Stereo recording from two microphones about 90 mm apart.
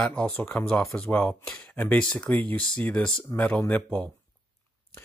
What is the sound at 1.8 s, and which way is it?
Speech, 15° left (ahead or behind).